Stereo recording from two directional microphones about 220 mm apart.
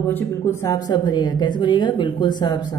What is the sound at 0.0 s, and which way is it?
A woman's voice, 10° left (ahead or behind).